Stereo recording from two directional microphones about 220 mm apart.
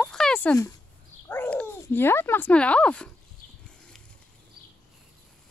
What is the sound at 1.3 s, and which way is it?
Speech, 10° left (ahead or behind).